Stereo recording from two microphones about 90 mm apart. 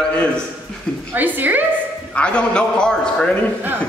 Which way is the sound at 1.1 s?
20° right (ahead or behind).